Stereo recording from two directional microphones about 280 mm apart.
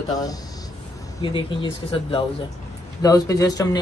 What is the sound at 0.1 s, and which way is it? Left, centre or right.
Speech, centre.